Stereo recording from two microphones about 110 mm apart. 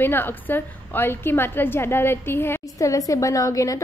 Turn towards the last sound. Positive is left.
turn(degrees=30)  # may be behind; listen again after turning